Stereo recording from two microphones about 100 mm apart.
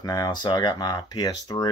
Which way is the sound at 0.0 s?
45° left (ahead or behind).